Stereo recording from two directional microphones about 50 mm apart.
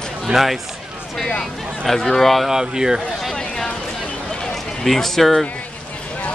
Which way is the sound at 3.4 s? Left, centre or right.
Centre.